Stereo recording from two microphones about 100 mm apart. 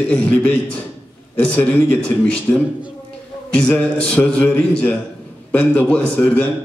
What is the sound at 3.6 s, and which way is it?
A man's voice, 15° left (ahead or behind).